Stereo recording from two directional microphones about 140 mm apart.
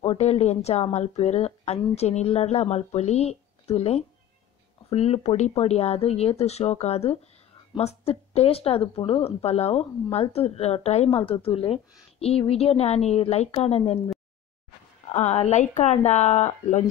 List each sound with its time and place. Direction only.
0.0 s speech: 45° left (ahead or behind)
15.1 s a woman's voice: 50° left (ahead or behind)